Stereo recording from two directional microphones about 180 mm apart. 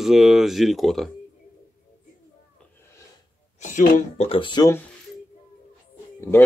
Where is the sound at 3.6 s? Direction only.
45° left (ahead or behind); by 4.7 s 25° left (ahead or behind).